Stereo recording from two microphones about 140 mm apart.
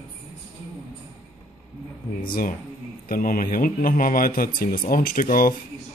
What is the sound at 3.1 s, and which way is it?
Speech, 80° left.